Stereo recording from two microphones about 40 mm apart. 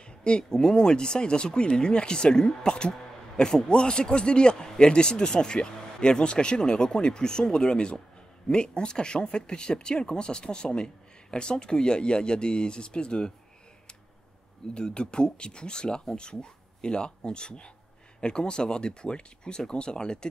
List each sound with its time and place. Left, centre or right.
0.0 s speech: left
14.7 s speech: left